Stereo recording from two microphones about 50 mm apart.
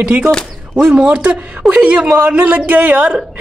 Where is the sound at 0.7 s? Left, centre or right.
Centre.